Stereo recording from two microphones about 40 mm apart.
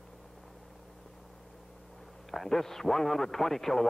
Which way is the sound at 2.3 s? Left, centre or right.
Centre.